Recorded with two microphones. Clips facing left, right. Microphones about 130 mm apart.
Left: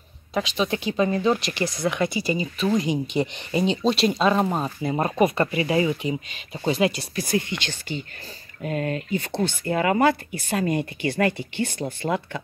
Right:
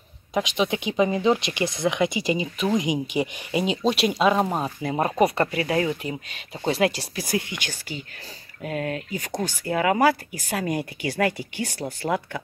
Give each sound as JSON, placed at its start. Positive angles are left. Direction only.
{"t": 0.3, "sound": "speech", "side_deg": -15}
{"t": 5.6, "sound": "speech", "side_deg": 10}
{"t": 6.8, "sound": "speech", "side_deg": -60}
{"t": 7.2, "sound": "speech", "side_deg": -10}